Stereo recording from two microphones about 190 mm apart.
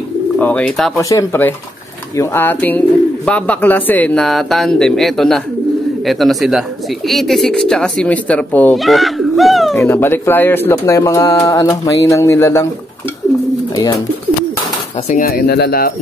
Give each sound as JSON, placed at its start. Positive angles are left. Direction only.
{"t": 0.4, "sound": "speech", "side_deg": 10}
{"t": 0.9, "sound": "speech", "side_deg": 15}
{"t": 9.8, "sound": "speech", "side_deg": 10}
{"t": 15.0, "sound": "speech", "side_deg": 50}